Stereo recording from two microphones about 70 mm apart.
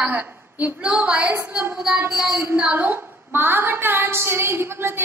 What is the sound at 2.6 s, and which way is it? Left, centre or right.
A woman's voice, right.